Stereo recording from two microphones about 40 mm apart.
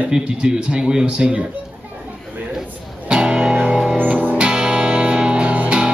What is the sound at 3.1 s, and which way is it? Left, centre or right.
Music, right.